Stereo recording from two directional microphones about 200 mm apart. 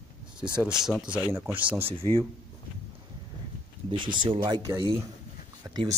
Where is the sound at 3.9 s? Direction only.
25° right (ahead or behind).